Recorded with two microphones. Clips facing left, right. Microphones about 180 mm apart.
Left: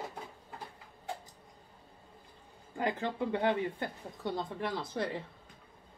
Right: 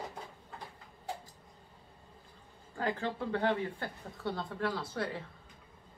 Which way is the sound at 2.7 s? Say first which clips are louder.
Left 1 dB; 15° left (ahead or behind).